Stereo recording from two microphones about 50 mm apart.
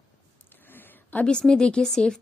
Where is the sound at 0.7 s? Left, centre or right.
Left.